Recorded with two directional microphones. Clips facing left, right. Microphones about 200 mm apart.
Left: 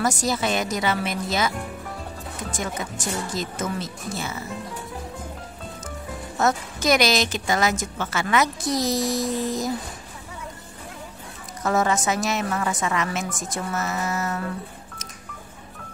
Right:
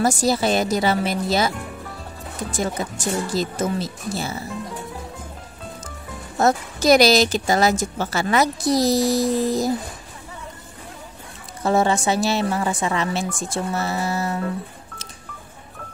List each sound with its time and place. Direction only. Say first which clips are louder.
0.0 s speech: right 4 dB; 30° right (ahead or behind)
2.5 s speech: right 6 dB; 35° right (ahead or behind)
6.3 s speech: right 4 dB; 35° right (ahead or behind)
11.6 s speech: right 3 dB; 30° right (ahead or behind)